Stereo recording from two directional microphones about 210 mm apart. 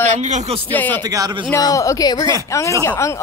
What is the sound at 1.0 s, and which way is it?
Speech, 15° right (ahead or behind).